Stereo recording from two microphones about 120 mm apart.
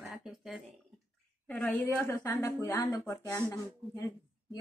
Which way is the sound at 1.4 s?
15° left (ahead or behind).